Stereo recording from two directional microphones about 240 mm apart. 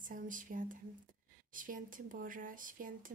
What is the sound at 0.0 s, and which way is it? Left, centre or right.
Speech, right.